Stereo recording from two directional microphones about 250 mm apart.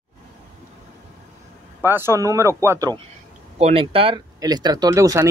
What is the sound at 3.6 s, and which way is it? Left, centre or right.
Speech, right.